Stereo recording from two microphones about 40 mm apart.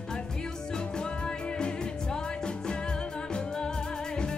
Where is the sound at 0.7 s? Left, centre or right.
Left.